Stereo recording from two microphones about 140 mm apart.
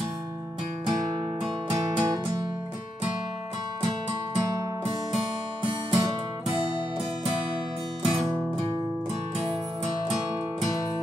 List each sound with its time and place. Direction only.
1.7 s music: 30° right (ahead or behind)
5.6 s music: 35° right (ahead or behind)
8.0 s music: 5° right (ahead or behind)